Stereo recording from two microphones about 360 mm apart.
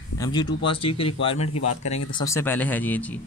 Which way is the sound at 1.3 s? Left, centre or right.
Left.